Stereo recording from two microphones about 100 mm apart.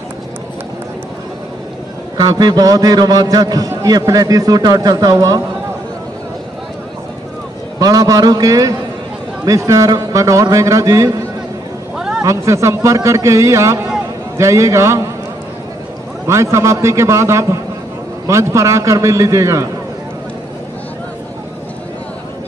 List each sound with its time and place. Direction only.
2.1 s a man's voice: 40° right (ahead or behind)
7.8 s a man's voice: 35° right (ahead or behind)
12.2 s a man's voice: 30° right (ahead or behind)
16.3 s a man's voice: 30° right (ahead or behind)